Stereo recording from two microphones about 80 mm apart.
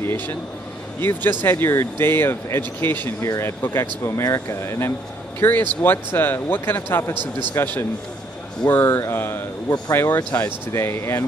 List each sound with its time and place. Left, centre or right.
1.4 s speech: left